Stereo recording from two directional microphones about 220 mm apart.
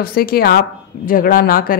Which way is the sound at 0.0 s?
45° left (ahead or behind).